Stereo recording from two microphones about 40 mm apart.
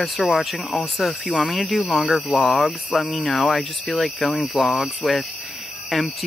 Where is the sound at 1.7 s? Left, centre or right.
Centre.